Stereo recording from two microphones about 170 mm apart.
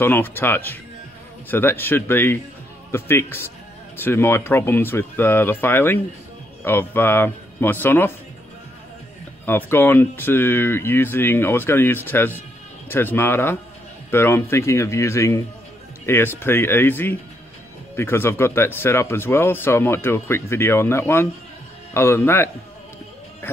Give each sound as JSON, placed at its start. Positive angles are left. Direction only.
{"t": 0.0, "sound": "speech", "side_deg": 10}
{"t": 9.5, "sound": "speech", "side_deg": 15}